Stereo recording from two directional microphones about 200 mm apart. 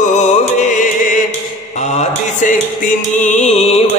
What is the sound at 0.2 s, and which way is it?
Music, 40° left (ahead or behind).